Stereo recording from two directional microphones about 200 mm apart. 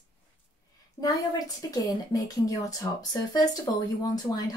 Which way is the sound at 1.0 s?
10° left (ahead or behind).